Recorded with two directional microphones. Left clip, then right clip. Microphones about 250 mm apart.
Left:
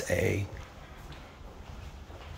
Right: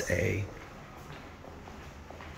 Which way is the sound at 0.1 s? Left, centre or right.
Centre.